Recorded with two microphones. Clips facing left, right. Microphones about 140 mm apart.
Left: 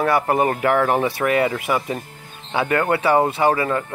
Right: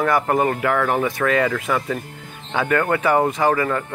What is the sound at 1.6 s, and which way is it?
Speech, 20° left (ahead or behind).